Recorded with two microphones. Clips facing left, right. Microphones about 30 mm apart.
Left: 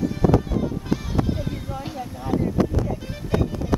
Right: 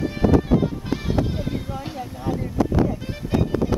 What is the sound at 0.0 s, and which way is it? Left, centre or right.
Music, right.